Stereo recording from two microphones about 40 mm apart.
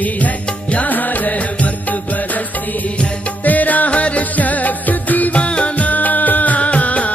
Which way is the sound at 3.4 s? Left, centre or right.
Left.